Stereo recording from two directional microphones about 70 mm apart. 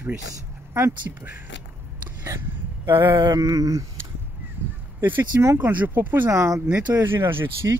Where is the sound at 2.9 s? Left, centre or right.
Right.